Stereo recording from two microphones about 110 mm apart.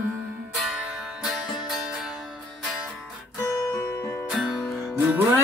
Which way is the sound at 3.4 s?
25° left (ahead or behind).